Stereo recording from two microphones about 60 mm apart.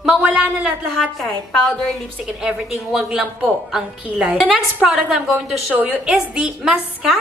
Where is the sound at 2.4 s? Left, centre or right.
Centre.